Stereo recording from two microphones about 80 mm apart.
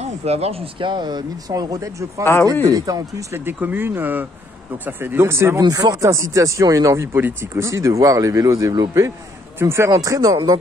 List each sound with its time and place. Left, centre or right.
0.7 s a man's voice: right
3.5 s speech: right
5.6 s a man's voice: right
7.1 s speech: right
7.6 s a man's voice: right
9.8 s a man's voice: right